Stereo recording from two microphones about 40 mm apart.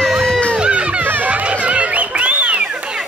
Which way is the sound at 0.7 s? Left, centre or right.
Right.